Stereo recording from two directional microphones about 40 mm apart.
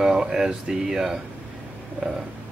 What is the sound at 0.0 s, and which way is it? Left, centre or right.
Speech, centre.